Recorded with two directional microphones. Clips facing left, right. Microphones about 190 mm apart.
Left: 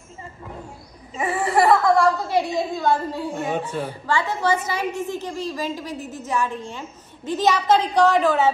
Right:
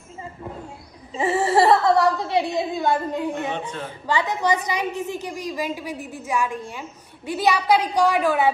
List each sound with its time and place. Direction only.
1.1 s a sound: 25° right (ahead or behind)
2.2 s a woman's voice: 20° right (ahead or behind)
3.4 s speech: 10° left (ahead or behind)
4.0 s a woman's voice: 15° right (ahead or behind)